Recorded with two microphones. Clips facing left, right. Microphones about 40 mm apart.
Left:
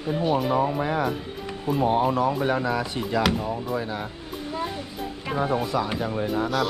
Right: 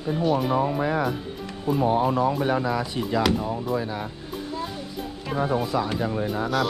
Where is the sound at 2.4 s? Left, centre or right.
Left.